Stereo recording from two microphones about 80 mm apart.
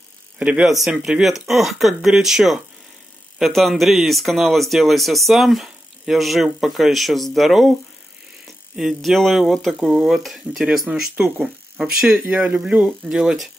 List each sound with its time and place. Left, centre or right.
0.4 s speech: centre
0.7 s speech: centre
8.7 s speech: centre
11.1 s speech: centre
11.8 s speech: centre